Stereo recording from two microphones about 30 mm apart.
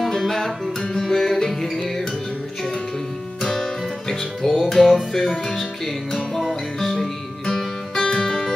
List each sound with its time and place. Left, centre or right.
0.1 s music: centre
4.1 s music: centre
7.9 s music: left